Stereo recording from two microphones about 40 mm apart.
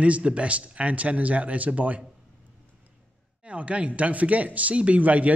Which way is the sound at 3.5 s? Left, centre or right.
Right.